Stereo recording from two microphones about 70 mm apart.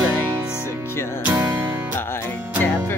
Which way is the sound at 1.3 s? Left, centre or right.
Right.